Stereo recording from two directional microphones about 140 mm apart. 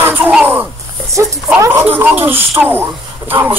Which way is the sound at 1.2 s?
20° right (ahead or behind).